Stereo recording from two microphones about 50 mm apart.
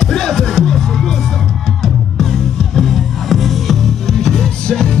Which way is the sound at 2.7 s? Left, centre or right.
Centre.